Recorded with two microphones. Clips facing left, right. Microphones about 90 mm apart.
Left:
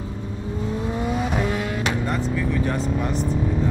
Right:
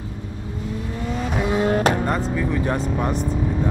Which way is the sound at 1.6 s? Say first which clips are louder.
Right 6 dB; 45° right (ahead or behind).